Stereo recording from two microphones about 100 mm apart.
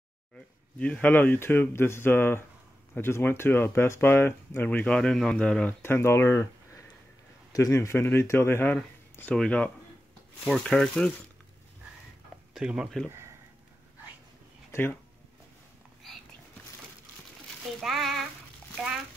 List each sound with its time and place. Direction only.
0.7 s speech: 10° left (ahead or behind)
5.8 s speech: 25° left (ahead or behind)
9.3 s speech: 10° left (ahead or behind)
12.5 s speech: 5° right (ahead or behind)
14.7 s speech: 25° left (ahead or behind)
16.0 s whispering: centre (ahead or behind)
17.7 s a sound: centre (ahead or behind)